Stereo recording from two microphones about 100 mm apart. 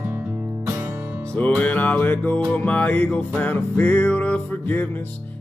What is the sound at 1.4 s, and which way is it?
Music, 15° left (ahead or behind).